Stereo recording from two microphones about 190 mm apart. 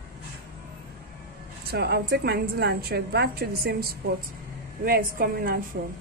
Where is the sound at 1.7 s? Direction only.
55° right (ahead or behind).